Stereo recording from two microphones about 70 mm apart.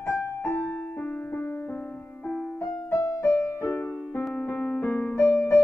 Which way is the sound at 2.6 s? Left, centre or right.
Left.